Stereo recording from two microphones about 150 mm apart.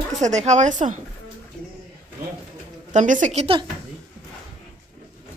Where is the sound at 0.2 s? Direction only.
50° right (ahead or behind).